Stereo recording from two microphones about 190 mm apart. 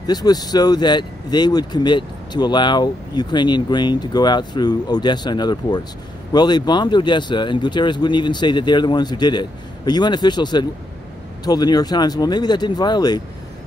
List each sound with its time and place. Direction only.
0.0 s speech: 20° left (ahead or behind)